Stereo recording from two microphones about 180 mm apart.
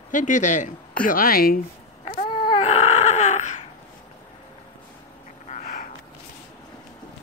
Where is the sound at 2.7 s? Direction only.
40° left (ahead or behind).